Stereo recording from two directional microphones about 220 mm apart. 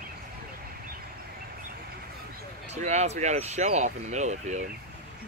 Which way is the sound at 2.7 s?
30° right (ahead or behind).